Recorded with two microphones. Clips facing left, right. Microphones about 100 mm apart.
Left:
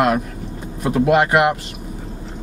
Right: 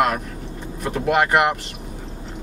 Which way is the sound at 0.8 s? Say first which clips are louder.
Left 7 dB; 10° left (ahead or behind).